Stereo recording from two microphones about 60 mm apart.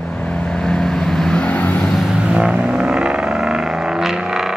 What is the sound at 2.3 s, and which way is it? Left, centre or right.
Vehicle, centre.